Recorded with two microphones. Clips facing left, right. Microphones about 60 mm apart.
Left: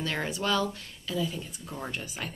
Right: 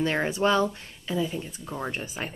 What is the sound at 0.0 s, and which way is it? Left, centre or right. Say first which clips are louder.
Speech: right 7 dB; right.